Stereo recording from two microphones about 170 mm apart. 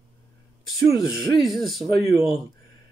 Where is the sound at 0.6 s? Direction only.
20° left (ahead or behind).